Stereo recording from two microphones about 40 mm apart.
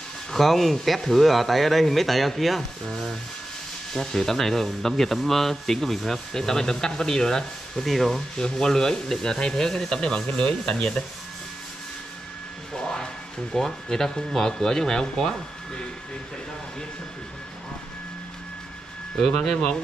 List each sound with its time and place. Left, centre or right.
0.3 s speech: centre
8.4 s speech: centre
12.8 s speech: centre
19.1 s speech: centre